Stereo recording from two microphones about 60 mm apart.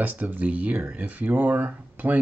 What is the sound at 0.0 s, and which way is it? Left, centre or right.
Speech, right.